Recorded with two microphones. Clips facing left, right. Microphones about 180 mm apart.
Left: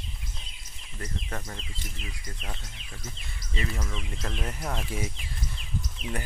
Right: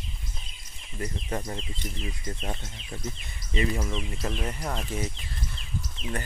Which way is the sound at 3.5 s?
25° right (ahead or behind).